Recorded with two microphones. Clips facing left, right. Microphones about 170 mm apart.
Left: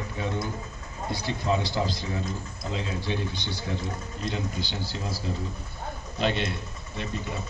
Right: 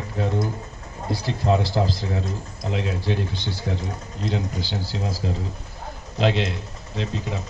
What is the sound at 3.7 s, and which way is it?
Speech, 55° right (ahead or behind).